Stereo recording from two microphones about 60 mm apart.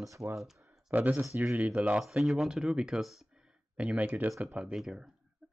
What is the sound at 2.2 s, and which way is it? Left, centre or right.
Speech, centre.